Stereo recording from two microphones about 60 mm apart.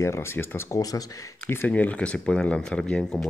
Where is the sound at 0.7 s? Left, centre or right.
Left.